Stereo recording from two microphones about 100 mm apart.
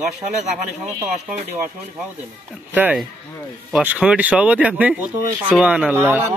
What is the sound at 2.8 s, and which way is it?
Speech, 15° right (ahead or behind).